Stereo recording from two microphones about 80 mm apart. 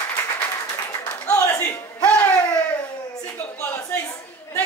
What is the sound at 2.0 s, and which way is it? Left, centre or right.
Music, centre.